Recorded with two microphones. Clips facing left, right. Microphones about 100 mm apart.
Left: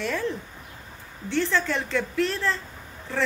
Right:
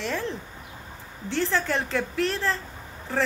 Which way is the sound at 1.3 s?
15° right (ahead or behind).